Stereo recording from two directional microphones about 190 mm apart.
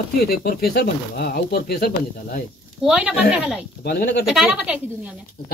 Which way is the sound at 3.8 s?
50° left (ahead or behind).